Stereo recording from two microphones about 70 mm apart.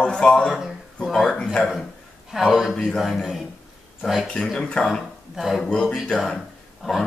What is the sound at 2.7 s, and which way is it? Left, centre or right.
Speech, centre.